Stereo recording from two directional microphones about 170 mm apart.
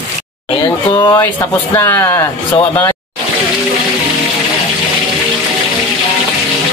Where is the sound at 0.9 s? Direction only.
20° left (ahead or behind).